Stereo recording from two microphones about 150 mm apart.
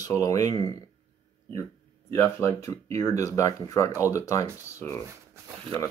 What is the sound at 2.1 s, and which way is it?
Speech, 15° left (ahead or behind).